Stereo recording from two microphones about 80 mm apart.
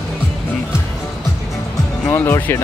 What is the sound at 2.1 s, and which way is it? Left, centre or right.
Speech, left.